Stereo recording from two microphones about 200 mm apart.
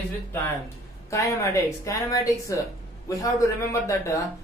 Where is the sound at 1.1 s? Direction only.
15° left (ahead or behind).